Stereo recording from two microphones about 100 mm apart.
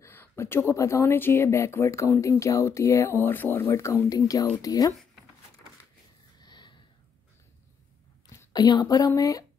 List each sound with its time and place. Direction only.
0.0 s speech: 25° left (ahead or behind)
6.4 s a sound: 50° left (ahead or behind)
8.5 s speech: 45° left (ahead or behind)